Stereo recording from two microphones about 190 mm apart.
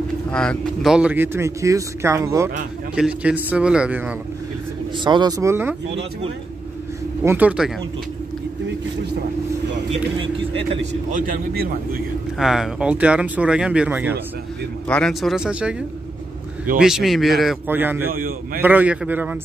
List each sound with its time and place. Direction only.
0.3 s speech: 5° left (ahead or behind); by 2.5 s 15° right (ahead or behind)
3.0 s speech: 5° right (ahead or behind)
4.9 s speech: 25° right (ahead or behind)
7.2 s speech: 10° right (ahead or behind)
10.9 s a man's voice: 40° right (ahead or behind)
12.4 s speech: centre (ahead or behind)
14.9 s speech: 5° left (ahead or behind)
16.8 s speech: centre (ahead or behind)
18.1 s a man's voice: 50° right (ahead or behind)
18.6 s speech: 10° right (ahead or behind)